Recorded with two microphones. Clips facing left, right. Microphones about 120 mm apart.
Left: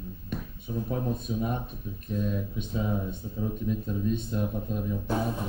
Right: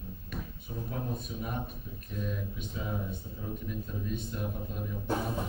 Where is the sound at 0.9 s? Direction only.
25° left (ahead or behind).